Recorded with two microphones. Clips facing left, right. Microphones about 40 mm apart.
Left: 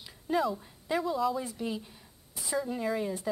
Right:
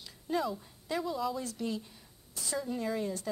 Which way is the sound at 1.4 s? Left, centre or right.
Centre.